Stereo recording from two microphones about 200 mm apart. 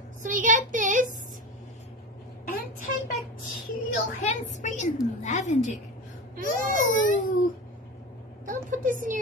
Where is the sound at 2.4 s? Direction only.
40° left (ahead or behind).